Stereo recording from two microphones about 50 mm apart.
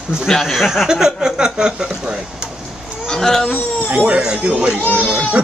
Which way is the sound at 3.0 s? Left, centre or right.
Centre.